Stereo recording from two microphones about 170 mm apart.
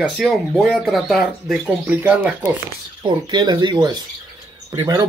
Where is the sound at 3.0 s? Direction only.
25° right (ahead or behind).